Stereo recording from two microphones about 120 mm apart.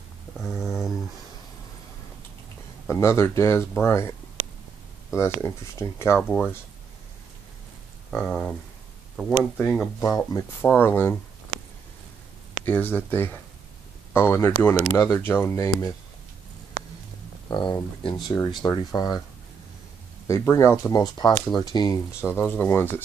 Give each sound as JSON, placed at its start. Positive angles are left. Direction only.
{"t": 0.6, "sound": "a sound", "side_deg": 0}
{"t": 2.9, "sound": "speech", "side_deg": 25}
{"t": 5.1, "sound": "speech", "side_deg": 25}
{"t": 6.1, "sound": "speech", "side_deg": 10}
{"t": 8.1, "sound": "speech", "side_deg": 5}
{"t": 9.9, "sound": "speech", "side_deg": 30}
{"t": 10.6, "sound": "speech", "side_deg": 15}
{"t": 12.6, "sound": "speech", "side_deg": 15}
{"t": 15.5, "sound": "speech", "side_deg": 30}
{"t": 17.5, "sound": "speech", "side_deg": 40}
{"t": 20.2, "sound": "speech", "side_deg": 25}
{"t": 22.2, "sound": "speech", "side_deg": 20}